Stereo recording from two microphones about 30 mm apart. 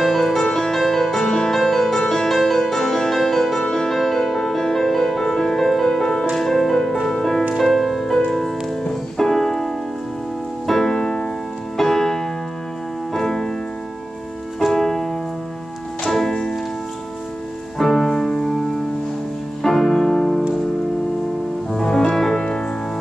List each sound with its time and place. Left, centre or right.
0.0 s music: centre
3.6 s music: centre
3.9 s music: centre
10.7 s music: centre
11.0 s music: left
11.7 s music: centre
14.7 s keyboard: centre
16.1 s music: centre
17.7 s music: centre
19.6 s music: centre
21.7 s music: centre